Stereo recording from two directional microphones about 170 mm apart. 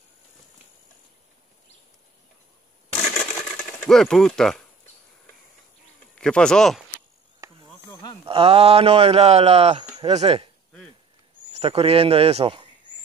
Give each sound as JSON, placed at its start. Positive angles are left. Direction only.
{"t": 3.0, "sound": "coin", "side_deg": 40}
{"t": 3.5, "sound": "speech", "side_deg": 5}
{"t": 6.1, "sound": "speech", "side_deg": 5}
{"t": 7.4, "sound": "insect", "side_deg": -20}
{"t": 7.9, "sound": "a sound", "side_deg": 25}
{"t": 8.3, "sound": "speech", "side_deg": -35}
{"t": 11.5, "sound": "speech", "side_deg": -35}